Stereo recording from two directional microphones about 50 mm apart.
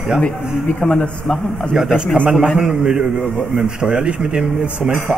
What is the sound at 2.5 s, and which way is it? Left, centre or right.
Speech, centre.